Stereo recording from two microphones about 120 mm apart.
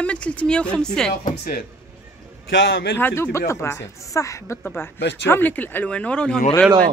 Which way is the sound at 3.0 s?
20° left (ahead or behind).